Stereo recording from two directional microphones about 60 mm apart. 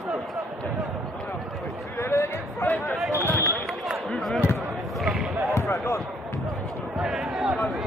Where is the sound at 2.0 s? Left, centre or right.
Left.